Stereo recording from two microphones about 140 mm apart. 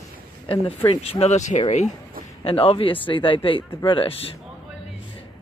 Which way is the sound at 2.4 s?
40° left (ahead or behind).